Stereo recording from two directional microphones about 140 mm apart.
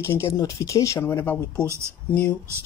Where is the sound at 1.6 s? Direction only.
20° right (ahead or behind).